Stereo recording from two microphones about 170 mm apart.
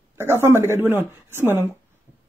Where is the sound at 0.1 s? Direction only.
15° right (ahead or behind).